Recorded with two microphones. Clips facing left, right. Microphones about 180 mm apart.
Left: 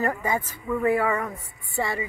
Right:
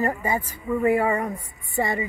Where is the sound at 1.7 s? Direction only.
20° right (ahead or behind).